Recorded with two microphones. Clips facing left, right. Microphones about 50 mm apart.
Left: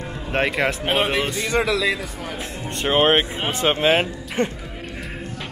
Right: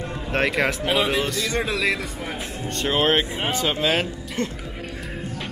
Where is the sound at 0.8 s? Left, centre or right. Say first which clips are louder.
Left 1 dB; left.